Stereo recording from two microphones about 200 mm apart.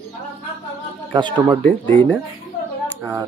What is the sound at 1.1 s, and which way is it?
Speech, 20° right (ahead or behind).